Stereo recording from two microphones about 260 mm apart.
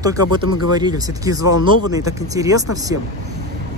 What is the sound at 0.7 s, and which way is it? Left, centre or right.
Speech, centre.